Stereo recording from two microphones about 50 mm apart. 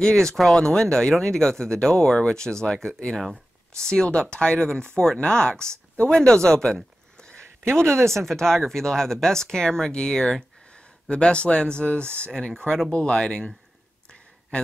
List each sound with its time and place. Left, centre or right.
0.0 s speech: centre
7.9 s speech: right
8.3 s speech: centre
14.0 s a sound: left